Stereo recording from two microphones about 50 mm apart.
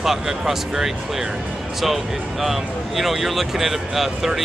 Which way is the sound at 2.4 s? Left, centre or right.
Centre.